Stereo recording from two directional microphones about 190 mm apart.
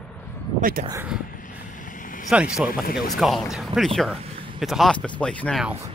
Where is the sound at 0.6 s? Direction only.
50° right (ahead or behind).